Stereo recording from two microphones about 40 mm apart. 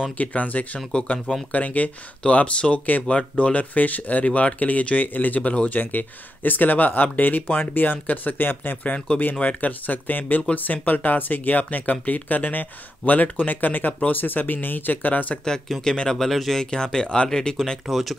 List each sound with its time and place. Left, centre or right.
0.2 s speech: left
8.8 s speech: left
15.8 s speech: centre
16.2 s speech: centre
16.7 s speech: centre
17.8 s speech: centre